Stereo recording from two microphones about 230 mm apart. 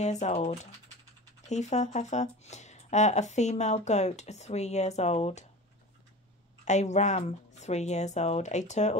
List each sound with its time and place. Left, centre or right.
0.0 s speech: left
6.6 s speech: left